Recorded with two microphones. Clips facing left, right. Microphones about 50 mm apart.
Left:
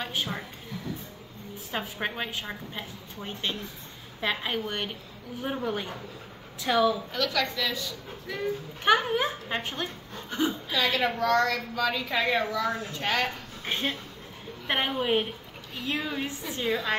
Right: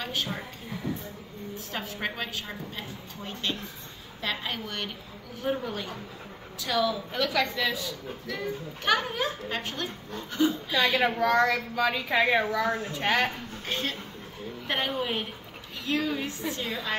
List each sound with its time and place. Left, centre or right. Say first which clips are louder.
0.0 s a woman's voice: even; centre
1.7 s a woman's voice: left 2 dB; centre
6.6 s a woman's voice: left 3 dB; left
7.1 s a woman's voice: right 1 dB; centre
8.3 s a woman's voice: left 3 dB; centre
10.8 s a woman's voice: right 2 dB; centre
13.7 s a woman's voice: left 2 dB; left